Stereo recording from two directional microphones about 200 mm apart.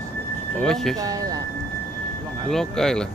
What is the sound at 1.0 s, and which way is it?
Speech, 20° right (ahead or behind).